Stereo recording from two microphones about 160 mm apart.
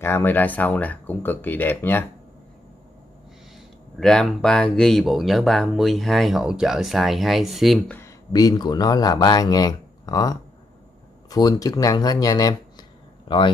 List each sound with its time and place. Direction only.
0.0 s speech: 15° left (ahead or behind)
3.5 s speech: 5° left (ahead or behind)
8.3 s speech: 25° left (ahead or behind)